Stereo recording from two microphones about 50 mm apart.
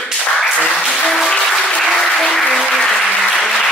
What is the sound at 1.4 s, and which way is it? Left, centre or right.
Applause, centre.